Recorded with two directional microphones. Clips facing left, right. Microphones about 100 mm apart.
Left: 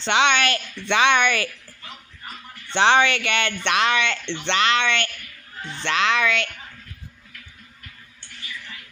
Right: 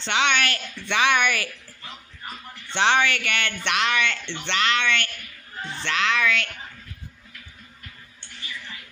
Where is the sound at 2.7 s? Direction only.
30° left (ahead or behind).